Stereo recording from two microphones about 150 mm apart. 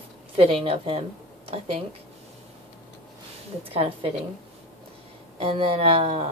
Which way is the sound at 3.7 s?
40° right (ahead or behind).